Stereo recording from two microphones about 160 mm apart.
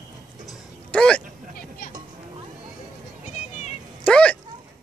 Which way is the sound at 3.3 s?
40° left (ahead or behind).